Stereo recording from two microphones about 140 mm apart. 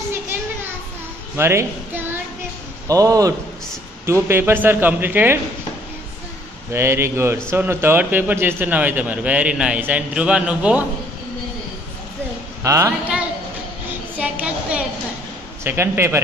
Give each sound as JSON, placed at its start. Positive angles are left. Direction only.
{"t": 1.3, "sound": "a child's voice", "side_deg": -20}
{"t": 6.7, "sound": "a man's voice", "side_deg": -20}
{"t": 12.6, "sound": "a man's voice", "side_deg": -20}
{"t": 14.1, "sound": "a sound", "side_deg": -10}
{"t": 15.6, "sound": "a man's voice", "side_deg": -15}